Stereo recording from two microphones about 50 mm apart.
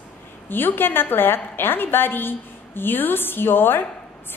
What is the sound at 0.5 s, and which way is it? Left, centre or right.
A woman's voice, left.